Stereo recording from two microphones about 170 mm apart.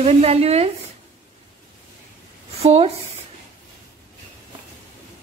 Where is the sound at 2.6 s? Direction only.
35° right (ahead or behind).